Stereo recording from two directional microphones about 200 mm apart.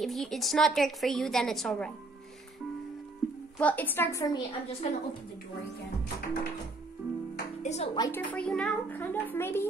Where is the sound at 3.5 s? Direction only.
10° left (ahead or behind).